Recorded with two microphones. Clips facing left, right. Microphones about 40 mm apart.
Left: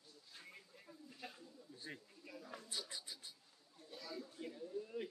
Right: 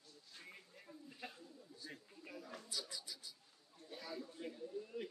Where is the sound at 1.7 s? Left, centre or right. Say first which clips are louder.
Left 2 dB; left.